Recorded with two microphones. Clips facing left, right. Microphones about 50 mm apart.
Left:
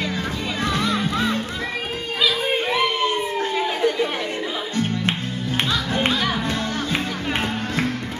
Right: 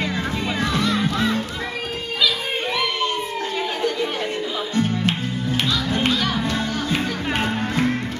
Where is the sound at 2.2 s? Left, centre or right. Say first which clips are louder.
Left 2 dB; centre.